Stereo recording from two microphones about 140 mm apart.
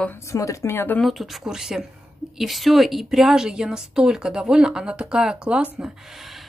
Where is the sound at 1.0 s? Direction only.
Centre (ahead or behind).